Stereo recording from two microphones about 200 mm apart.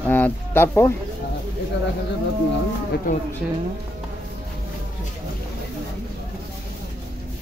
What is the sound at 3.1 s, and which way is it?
Speech, 40° left (ahead or behind).